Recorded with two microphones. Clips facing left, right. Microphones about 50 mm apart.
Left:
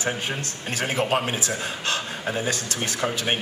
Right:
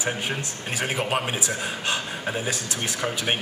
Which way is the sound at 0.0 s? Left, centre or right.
Centre.